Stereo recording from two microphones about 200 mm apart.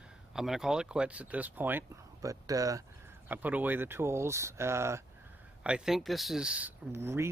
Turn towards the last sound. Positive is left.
turn(degrees=-15)  # may be behind; listen again after turning